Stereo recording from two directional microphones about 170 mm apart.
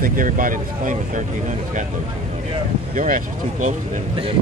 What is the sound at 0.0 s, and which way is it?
Speech, 55° right (ahead or behind).